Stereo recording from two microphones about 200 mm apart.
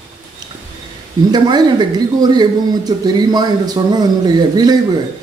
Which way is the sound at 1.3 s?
20° right (ahead or behind).